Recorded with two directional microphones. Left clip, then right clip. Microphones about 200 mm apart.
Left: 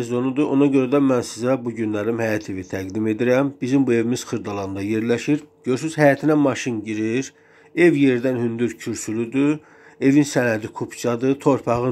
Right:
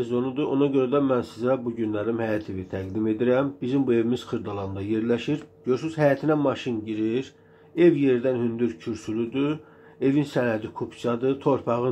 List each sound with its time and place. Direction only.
0.0 s a man's voice: 35° left (ahead or behind)